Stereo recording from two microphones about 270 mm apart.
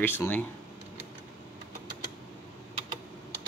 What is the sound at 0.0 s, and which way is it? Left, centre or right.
Speech, centre.